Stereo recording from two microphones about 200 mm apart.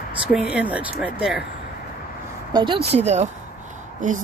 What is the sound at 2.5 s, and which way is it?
Speech, 25° right (ahead or behind).